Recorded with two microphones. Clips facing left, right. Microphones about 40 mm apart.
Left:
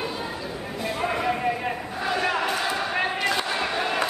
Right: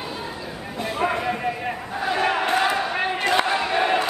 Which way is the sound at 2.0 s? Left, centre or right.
Centre.